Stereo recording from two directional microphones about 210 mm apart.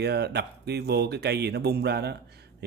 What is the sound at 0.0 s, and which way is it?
Speech, 50° right (ahead or behind).